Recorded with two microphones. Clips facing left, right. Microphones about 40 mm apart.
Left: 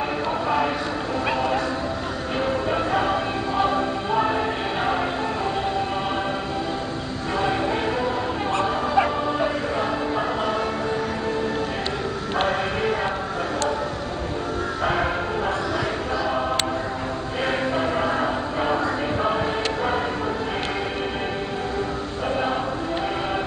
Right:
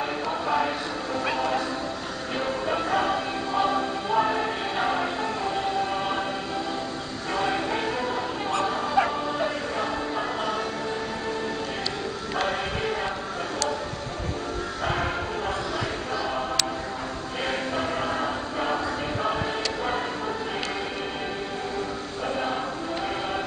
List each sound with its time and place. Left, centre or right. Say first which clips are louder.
1.3 s bow-wow: left 3 dB; centre
2.4 s music: left 3 dB; centre
7.3 s train: left 3 dB; centre
8.5 s bow-wow: left 3 dB; left
9.0 s bow-wow: left 3 dB; centre
14.9 s music: left 3 dB; centre
17.5 s music: left 4 dB; centre